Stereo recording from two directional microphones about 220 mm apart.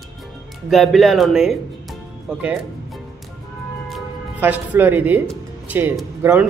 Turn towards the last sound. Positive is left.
turn(degrees=-10)  # may be behind; listen again after turning